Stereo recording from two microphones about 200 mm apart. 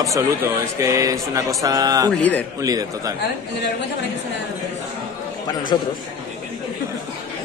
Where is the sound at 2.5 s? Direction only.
20° right (ahead or behind).